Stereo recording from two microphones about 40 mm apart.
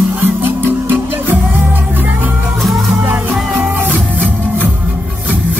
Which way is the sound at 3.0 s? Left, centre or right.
Right.